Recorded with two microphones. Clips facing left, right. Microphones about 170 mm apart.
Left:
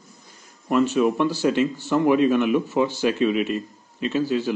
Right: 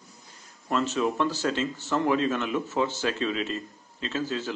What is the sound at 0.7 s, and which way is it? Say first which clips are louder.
Speech: left 7 dB; 15° left (ahead or behind).